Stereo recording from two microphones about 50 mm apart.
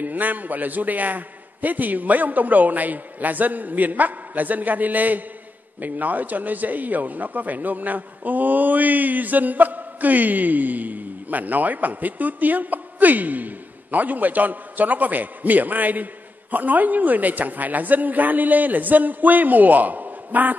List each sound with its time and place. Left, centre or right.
0.0 s a man's voice: right